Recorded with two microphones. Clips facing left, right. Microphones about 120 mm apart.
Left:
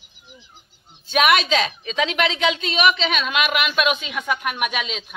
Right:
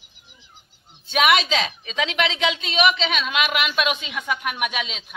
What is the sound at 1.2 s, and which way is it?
Speech, 20° right (ahead or behind).